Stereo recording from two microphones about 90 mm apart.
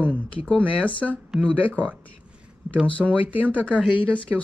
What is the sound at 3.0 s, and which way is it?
Speech, 15° right (ahead or behind).